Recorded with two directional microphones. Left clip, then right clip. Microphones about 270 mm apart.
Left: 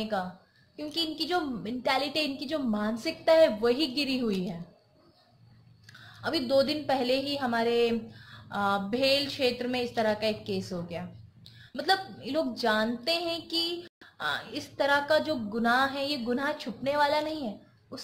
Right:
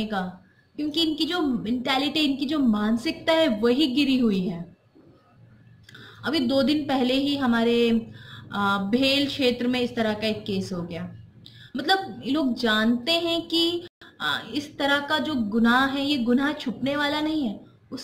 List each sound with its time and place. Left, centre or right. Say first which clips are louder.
0.0 s speech: right 2 dB; centre
6.2 s speech: right 3 dB; centre